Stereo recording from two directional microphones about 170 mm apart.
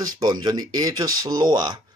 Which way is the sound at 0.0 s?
25° right (ahead or behind).